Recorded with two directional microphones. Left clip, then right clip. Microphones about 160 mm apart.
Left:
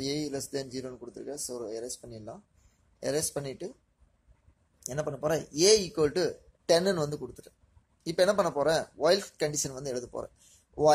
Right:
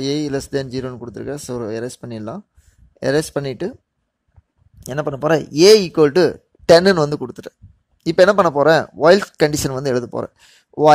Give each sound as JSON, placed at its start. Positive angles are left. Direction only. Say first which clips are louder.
{"t": 0.0, "sound": "speech", "louder": "right 12 dB", "side_deg": -45}
{"t": 4.8, "sound": "speech", "louder": "right 12 dB", "side_deg": -45}